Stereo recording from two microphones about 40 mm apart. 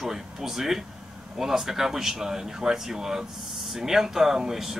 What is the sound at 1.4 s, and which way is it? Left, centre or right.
Speech, centre.